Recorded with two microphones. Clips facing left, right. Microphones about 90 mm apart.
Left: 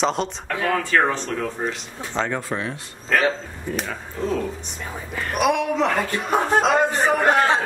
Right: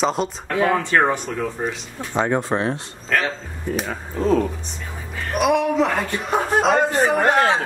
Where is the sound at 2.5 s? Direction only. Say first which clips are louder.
Right 6 dB; 35° right (ahead or behind).